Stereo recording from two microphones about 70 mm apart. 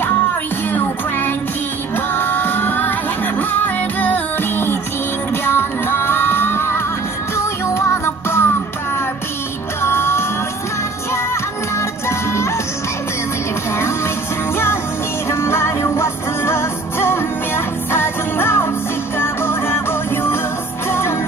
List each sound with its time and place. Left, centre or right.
0.0 s music: left
9.8 s music: left
12.1 s music: left
15.2 s music: left